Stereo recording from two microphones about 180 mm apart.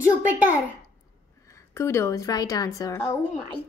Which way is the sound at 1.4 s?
15° left (ahead or behind).